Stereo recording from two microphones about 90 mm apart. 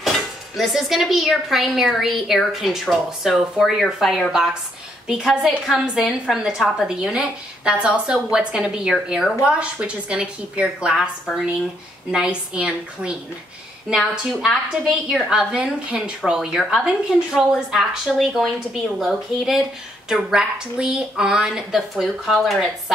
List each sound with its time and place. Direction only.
0.6 s a woman's voice: centre (ahead or behind)